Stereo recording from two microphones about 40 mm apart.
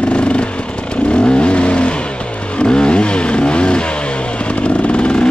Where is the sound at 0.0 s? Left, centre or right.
Left.